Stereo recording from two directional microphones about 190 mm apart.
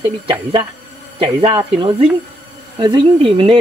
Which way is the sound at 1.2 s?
30° right (ahead or behind).